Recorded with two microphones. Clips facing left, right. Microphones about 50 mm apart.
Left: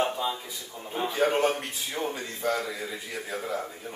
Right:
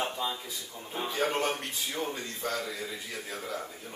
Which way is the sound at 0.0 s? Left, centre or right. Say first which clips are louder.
Left 5 dB; centre.